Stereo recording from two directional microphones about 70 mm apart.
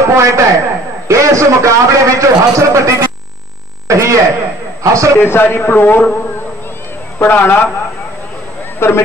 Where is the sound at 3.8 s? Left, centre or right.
Right.